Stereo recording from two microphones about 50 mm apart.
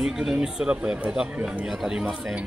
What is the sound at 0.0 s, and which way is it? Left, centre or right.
Speech, centre.